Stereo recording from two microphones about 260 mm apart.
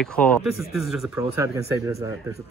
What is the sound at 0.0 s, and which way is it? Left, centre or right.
Speech, centre.